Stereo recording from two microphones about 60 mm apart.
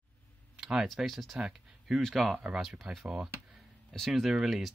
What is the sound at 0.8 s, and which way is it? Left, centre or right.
Speech, centre.